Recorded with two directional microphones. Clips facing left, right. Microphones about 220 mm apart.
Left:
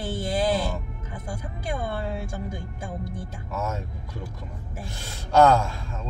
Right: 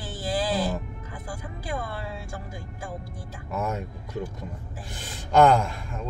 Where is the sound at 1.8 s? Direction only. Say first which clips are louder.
Left 5 dB; 25° left (ahead or behind).